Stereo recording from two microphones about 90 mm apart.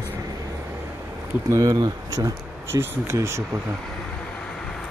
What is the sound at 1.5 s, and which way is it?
Speech, 40° right (ahead or behind).